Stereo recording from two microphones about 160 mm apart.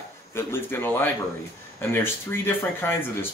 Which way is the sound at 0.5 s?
15° left (ahead or behind).